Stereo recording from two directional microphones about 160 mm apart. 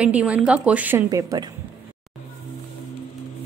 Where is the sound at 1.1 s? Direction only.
20° right (ahead or behind).